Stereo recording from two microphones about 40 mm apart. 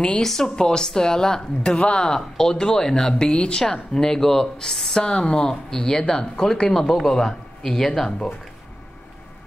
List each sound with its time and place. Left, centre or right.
0.2 s a woman's voice: centre